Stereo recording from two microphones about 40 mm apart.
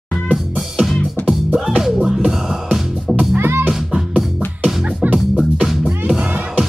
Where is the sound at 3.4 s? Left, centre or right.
Right.